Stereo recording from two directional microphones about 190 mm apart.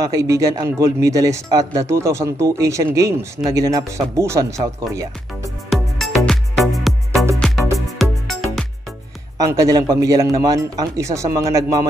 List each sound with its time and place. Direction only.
0.0 s speech: 15° right (ahead or behind)
5.7 s music: centre (ahead or behind)
9.4 s speech: 20° right (ahead or behind)